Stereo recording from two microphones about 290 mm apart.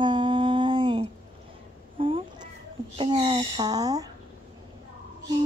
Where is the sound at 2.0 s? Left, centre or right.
Centre.